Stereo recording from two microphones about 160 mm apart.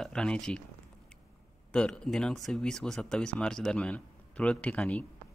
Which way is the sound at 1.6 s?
5° left (ahead or behind).